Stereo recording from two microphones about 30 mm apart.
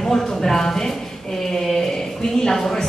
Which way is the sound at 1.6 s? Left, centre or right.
Centre.